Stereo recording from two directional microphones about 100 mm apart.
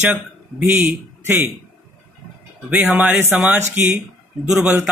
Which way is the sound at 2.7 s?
15° right (ahead or behind).